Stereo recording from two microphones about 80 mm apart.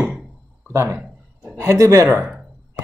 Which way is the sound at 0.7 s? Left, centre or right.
Right.